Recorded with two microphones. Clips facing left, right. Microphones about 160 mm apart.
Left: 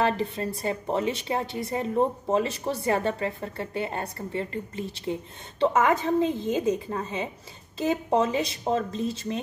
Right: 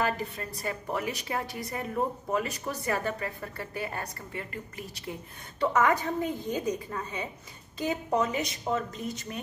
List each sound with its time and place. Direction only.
0.0 s a woman's voice: 25° left (ahead or behind)